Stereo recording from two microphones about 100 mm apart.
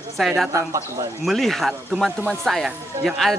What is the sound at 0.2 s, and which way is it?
Speech, centre (ahead or behind).